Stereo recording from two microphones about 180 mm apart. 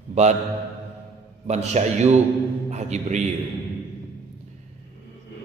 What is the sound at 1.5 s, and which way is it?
A man's voice, 40° right (ahead or behind).